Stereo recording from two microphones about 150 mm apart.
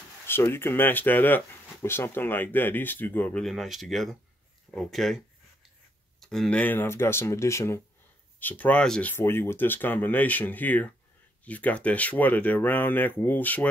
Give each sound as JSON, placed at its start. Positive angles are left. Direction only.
{"t": 0.3, "sound": "speech", "side_deg": 15}
{"t": 3.4, "sound": "speech", "side_deg": 0}